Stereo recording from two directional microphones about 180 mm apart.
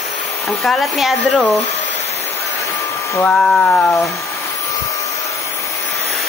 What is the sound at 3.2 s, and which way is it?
Speech, 10° left (ahead or behind).